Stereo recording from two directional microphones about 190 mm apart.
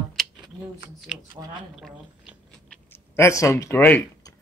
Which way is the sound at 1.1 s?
5° right (ahead or behind).